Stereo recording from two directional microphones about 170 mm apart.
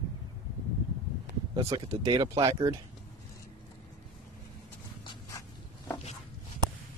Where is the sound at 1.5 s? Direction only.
35° right (ahead or behind); by 2.8 s 20° right (ahead or behind).